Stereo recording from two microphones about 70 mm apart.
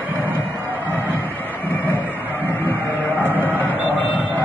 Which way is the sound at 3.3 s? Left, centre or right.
Right.